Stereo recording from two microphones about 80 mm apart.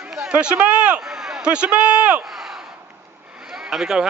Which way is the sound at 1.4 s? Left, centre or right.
Centre.